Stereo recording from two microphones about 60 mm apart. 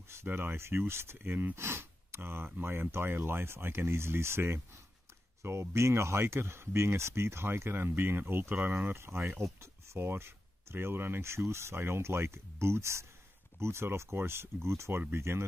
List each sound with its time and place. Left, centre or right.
0.3 s speech: right